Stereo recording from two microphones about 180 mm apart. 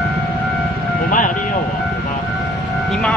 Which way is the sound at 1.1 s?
50° left (ahead or behind).